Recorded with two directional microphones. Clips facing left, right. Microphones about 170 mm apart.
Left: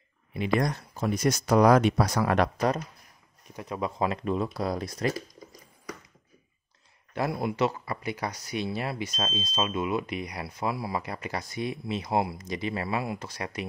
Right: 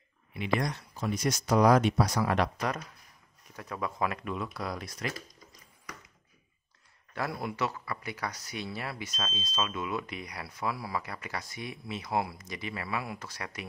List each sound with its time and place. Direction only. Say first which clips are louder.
0.3 s speech: left 4 dB; 45° left (ahead or behind)
3.4 s speech: left 4 dB; 20° left (ahead or behind)
7.2 s speech: left 6 dB; 20° left (ahead or behind)